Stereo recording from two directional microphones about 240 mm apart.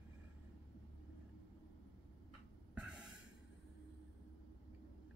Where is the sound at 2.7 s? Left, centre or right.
Centre.